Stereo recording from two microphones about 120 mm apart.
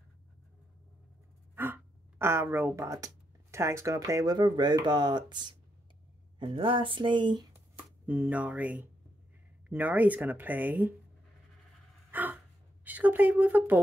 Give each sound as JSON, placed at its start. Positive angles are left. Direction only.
{"t": 1.5, "sound": "a sound", "side_deg": -20}
{"t": 3.5, "sound": "speech", "side_deg": -25}
{"t": 6.4, "sound": "speech", "side_deg": -45}
{"t": 7.5, "sound": "a sound", "side_deg": -15}
{"t": 9.7, "sound": "speech", "side_deg": -15}
{"t": 12.1, "sound": "gasp", "side_deg": -15}
{"t": 12.8, "sound": "a woman's voice", "side_deg": -15}